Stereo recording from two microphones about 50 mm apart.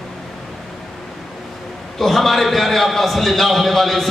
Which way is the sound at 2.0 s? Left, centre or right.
Centre.